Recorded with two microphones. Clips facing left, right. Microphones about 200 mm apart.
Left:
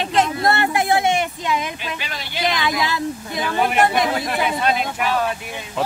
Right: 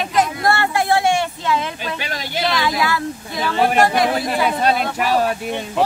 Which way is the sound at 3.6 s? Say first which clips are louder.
Right 3 dB; 40° right (ahead or behind).